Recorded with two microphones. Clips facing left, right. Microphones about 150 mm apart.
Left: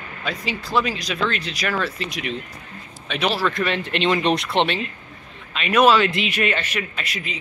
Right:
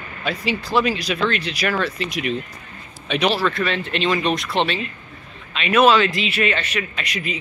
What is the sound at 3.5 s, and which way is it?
Speech, 15° left (ahead or behind).